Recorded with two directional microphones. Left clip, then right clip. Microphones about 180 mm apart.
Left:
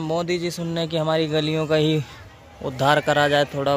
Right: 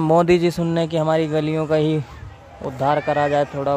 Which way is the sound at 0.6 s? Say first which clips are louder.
Right 4 dB; 15° right (ahead or behind).